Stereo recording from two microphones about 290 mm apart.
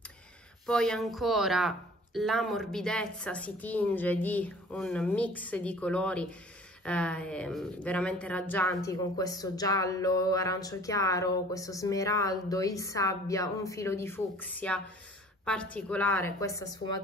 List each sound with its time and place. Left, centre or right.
0.7 s a woman's voice: centre